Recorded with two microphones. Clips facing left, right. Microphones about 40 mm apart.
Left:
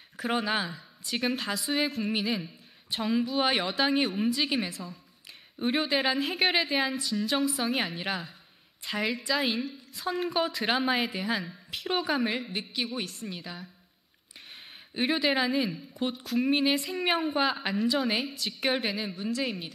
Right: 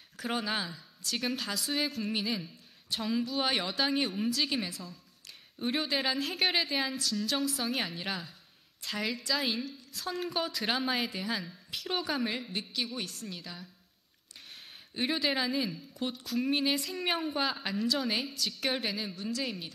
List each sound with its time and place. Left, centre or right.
0.2 s a woman's voice: centre
15.0 s a woman's voice: centre